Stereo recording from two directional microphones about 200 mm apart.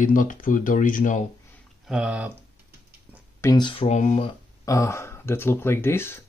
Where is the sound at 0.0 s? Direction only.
40° left (ahead or behind).